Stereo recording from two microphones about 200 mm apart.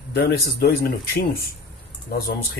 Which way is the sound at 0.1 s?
50° left (ahead or behind).